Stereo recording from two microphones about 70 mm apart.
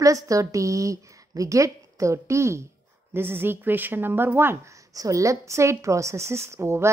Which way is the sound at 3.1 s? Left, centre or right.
Right.